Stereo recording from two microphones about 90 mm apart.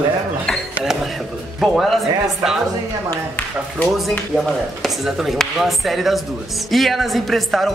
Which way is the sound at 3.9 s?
Centre (ahead or behind).